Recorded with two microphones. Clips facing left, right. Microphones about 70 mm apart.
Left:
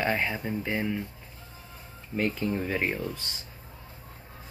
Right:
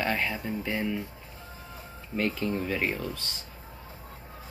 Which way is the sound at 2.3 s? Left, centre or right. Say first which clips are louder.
Even; centre.